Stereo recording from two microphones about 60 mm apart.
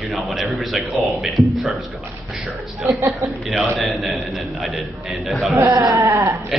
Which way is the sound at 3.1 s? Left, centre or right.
Centre.